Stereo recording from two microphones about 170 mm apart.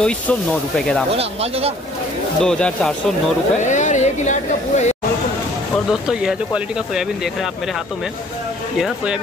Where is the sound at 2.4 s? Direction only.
5° left (ahead or behind).